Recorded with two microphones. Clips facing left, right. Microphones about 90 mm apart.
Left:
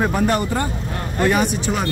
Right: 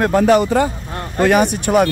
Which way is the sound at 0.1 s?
90° right.